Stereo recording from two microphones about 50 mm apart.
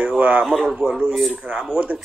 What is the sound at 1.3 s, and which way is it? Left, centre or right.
Speech, right.